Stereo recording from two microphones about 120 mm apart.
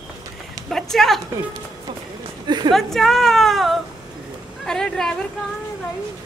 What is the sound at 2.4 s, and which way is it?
Speech, 35° right (ahead or behind).